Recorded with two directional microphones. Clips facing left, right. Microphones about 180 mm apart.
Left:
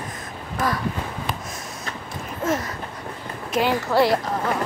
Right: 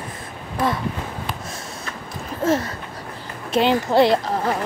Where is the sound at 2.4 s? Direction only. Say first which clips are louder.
Right 4 dB; 30° right (ahead or behind).